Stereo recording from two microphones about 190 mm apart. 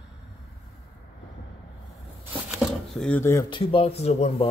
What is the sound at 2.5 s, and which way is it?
Speech, centre (ahead or behind).